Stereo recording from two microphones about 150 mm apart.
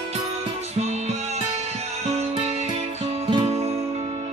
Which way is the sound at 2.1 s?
45° right (ahead or behind).